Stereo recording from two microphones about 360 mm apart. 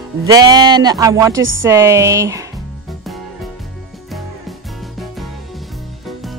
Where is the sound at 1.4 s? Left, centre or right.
Right.